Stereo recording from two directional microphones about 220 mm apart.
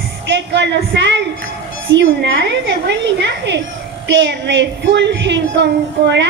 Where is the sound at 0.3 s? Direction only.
50° right (ahead or behind).